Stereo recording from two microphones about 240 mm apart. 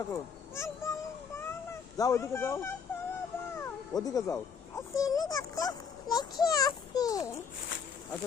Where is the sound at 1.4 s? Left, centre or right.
Centre.